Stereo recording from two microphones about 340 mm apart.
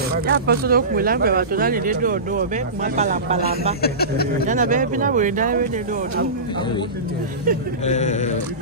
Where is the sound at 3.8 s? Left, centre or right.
Left.